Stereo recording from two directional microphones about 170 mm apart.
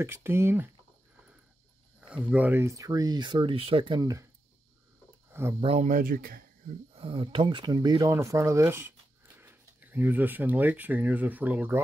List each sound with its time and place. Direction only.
0.0 s speech: 15° right (ahead or behind)
2.0 s speech: 5° right (ahead or behind); by 4.0 s 30° right (ahead or behind)
4.0 s speech: 20° right (ahead or behind)
5.6 s speech: 40° right (ahead or behind); by 6.4 s 55° right (ahead or behind)
6.9 s speech: 30° right (ahead or behind); by 11.8 s 10° right (ahead or behind)